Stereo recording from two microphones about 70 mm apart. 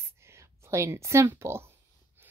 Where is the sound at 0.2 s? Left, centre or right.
Right.